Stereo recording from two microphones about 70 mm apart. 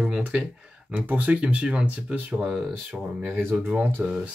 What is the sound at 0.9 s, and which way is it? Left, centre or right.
Speech, right.